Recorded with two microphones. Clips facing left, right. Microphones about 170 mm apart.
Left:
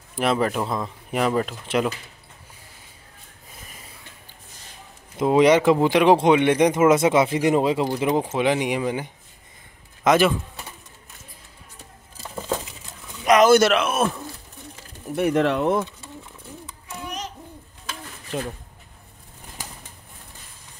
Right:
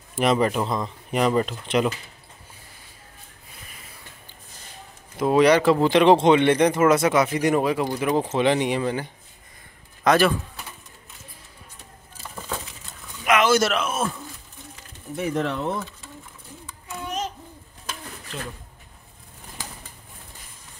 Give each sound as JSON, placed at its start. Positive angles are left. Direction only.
{"t": 0.1, "sound": "speech", "side_deg": 0}
{"t": 5.2, "sound": "speech", "side_deg": 20}
{"t": 8.3, "sound": "speech", "side_deg": 10}
{"t": 13.2, "sound": "a sound", "side_deg": 35}
{"t": 13.5, "sound": "speech", "side_deg": 70}